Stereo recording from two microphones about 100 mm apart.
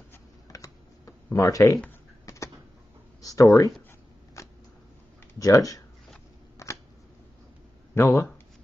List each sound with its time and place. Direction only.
0.1 s computer keyboard: 30° left (ahead or behind)
2.2 s a sound: 30° left (ahead or behind)
3.2 s speech: 35° left (ahead or behind)
4.4 s a sound: 30° left (ahead or behind)
5.4 s speech: 35° left (ahead or behind)
6.6 s shuffling cards: 30° left (ahead or behind)
7.9 s speech: 25° left (ahead or behind)